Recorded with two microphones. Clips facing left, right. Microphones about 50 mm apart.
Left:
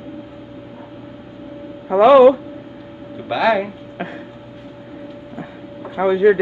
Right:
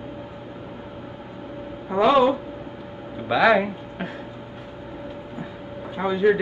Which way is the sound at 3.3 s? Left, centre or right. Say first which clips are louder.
Left 1 dB; centre.